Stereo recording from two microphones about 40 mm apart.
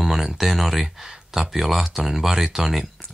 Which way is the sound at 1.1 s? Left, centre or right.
Centre.